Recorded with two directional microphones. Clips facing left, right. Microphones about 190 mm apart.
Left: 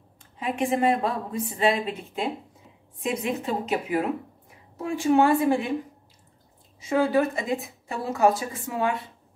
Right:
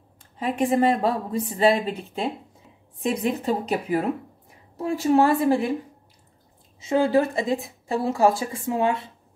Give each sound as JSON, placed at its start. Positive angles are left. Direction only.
{"t": 0.4, "sound": "speech", "side_deg": -35}
{"t": 6.8, "sound": "a woman's voice", "side_deg": -25}